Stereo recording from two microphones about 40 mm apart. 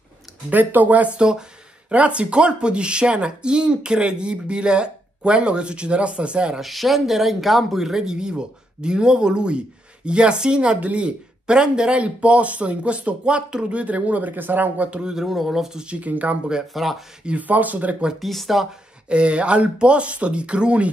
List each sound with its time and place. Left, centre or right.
0.5 s speech: right
1.1 s speech: right
1.9 s speech: right
6.6 s speech: centre; by 14.3 s right
14.3 s speech: right
14.9 s speech: right
15.1 s speech: centre
15.8 s speech: right
16.1 s speech: right
16.7 s speech: centre
17.4 s speech: right
18.2 s speech: centre
18.5 s speech: centre
19.0 s speech: right